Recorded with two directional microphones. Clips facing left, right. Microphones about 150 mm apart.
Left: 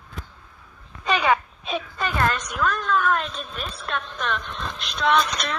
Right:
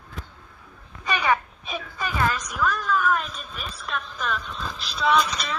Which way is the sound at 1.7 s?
5° right (ahead or behind).